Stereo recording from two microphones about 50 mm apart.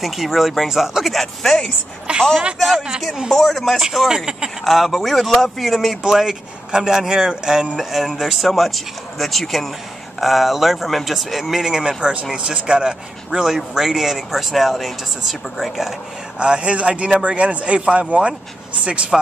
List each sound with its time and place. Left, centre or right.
0.0 s speech: centre
2.1 s a man's voice: right
3.3 s speech: centre
4.1 s speech: centre
4.6 s speech: centre
12.0 s speech: right; by 15.9 s centre
16.3 s a man's voice: right